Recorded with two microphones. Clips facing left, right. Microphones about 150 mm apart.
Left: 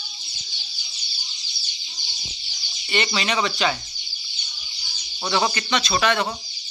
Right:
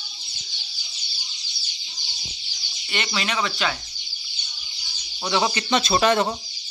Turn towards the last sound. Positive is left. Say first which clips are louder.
# right 3 dB
turn(degrees=-25)  # may be behind; listen again after turning